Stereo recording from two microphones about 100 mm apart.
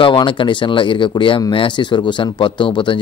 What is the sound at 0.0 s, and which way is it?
A man's voice, 55° left (ahead or behind).